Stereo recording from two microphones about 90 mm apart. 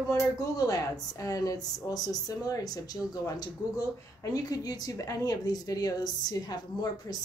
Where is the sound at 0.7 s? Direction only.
45° left (ahead or behind).